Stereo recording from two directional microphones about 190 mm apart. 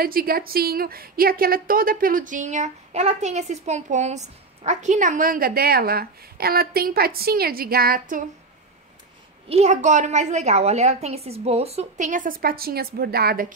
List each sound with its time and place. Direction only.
0.0 s a woman's voice: 50° right (ahead or behind)
9.5 s a woman's voice: 35° right (ahead or behind); by 13.5 s 55° right (ahead or behind)